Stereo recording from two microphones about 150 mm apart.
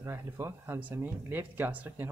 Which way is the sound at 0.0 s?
20° right (ahead or behind).